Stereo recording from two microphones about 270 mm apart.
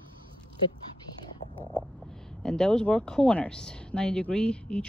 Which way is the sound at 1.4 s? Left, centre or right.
Centre.